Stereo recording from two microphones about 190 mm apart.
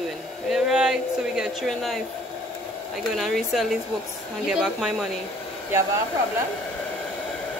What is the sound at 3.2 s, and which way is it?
Speech, centre (ahead or behind).